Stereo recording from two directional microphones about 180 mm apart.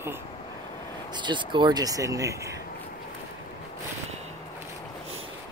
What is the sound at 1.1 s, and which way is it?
Speech, 25° right (ahead or behind).